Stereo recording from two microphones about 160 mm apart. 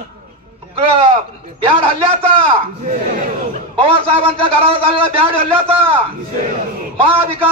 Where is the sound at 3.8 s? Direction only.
35° right (ahead or behind).